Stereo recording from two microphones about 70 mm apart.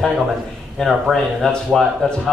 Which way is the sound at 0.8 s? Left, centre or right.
Centre.